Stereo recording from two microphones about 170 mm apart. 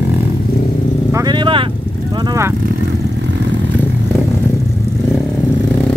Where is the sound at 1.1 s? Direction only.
25° right (ahead or behind).